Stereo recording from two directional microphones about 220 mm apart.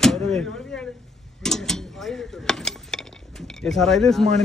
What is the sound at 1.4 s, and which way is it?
Mechanisms, centre (ahead or behind).